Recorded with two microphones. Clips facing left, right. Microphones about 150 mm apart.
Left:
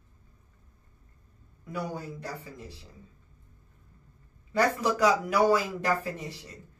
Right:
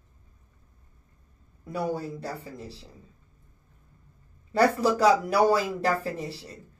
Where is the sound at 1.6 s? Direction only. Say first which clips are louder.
Right 5 dB; 35° right (ahead or behind).